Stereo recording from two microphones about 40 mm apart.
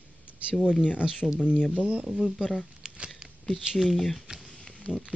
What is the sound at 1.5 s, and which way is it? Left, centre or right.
Speech, left.